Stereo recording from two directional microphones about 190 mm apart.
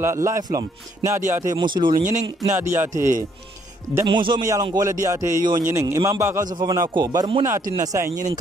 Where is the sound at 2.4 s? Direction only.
15° right (ahead or behind).